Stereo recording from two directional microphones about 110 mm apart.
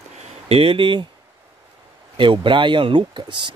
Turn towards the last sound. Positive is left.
turn(degrees=-45)  # may be behind; listen again after turning